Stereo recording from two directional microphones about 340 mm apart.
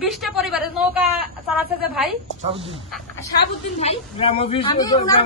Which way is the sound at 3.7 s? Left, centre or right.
Centre.